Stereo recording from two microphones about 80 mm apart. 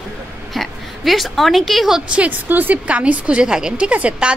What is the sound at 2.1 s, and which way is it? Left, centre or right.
A woman's voice, centre.